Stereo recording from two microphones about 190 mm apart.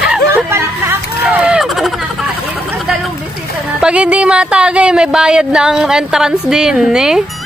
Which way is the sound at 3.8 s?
5° right (ahead or behind).